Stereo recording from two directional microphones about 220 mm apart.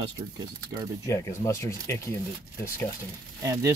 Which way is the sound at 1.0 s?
10° left (ahead or behind).